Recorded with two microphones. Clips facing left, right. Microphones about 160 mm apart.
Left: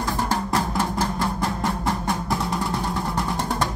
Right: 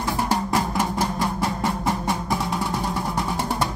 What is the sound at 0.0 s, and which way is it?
Music, 10° right (ahead or behind).